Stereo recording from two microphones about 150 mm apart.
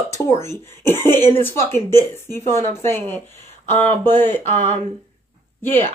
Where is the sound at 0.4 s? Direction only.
15° left (ahead or behind).